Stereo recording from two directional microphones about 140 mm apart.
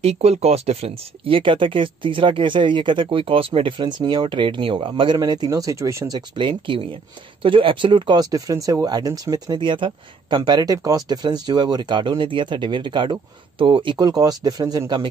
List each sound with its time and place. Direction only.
0.0 s speech: 50° right (ahead or behind); by 15.0 s 30° right (ahead or behind)